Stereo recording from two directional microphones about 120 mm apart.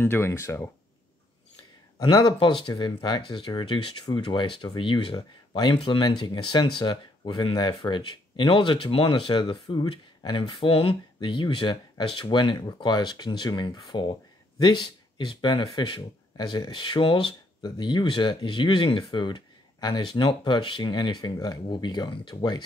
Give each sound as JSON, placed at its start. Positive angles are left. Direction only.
{"t": 0.0, "sound": "speech", "side_deg": 20}
{"t": 2.0, "sound": "speech", "side_deg": 35}